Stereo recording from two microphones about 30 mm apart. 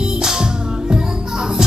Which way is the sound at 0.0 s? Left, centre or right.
Centre.